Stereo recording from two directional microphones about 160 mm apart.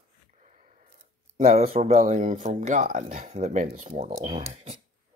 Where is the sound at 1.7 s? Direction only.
45° right (ahead or behind).